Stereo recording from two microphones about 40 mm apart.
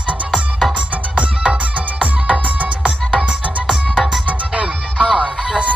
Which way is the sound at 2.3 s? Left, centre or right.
Right.